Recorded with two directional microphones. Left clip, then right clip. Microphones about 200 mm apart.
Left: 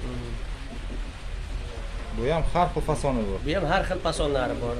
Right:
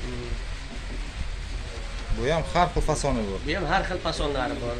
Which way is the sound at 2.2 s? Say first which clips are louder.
Right 1 dB; centre (ahead or behind).